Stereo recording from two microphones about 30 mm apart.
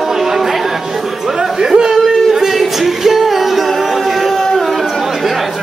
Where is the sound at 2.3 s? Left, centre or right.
Centre.